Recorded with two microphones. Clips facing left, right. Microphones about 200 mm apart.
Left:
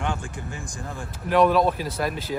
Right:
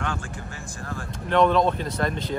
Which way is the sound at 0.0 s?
15° left (ahead or behind).